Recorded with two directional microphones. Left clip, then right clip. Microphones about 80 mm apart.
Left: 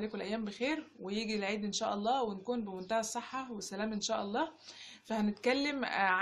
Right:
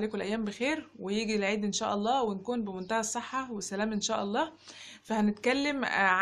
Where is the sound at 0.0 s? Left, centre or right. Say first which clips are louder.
Right 5 dB; right.